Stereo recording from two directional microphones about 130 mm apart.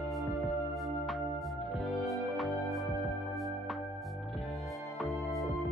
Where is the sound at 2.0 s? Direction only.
Centre (ahead or behind).